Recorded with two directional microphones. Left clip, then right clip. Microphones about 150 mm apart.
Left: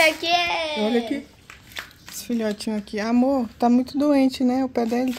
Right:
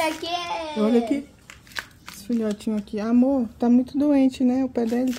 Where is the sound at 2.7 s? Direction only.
5° right (ahead or behind).